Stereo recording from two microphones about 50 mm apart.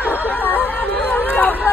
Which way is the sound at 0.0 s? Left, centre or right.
Left.